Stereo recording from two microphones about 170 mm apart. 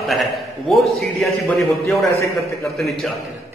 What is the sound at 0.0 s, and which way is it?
A man's voice, centre (ahead or behind).